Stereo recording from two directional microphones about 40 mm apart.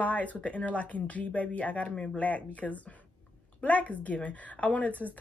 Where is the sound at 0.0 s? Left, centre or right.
Left.